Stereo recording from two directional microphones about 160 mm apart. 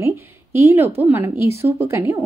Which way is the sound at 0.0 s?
15° right (ahead or behind).